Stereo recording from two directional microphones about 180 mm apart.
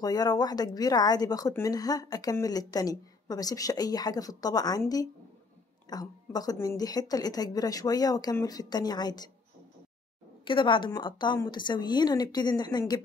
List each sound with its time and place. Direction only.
0.0 s speech: 20° left (ahead or behind)
10.4 s speech: 25° left (ahead or behind)